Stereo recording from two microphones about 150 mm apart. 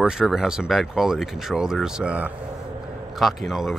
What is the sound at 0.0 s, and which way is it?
Speech, 5° right (ahead or behind).